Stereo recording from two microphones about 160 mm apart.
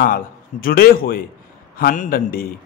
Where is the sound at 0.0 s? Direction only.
65° left (ahead or behind).